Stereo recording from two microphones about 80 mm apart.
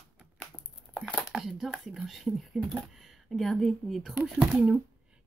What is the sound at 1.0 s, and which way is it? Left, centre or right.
A woman's voice, centre.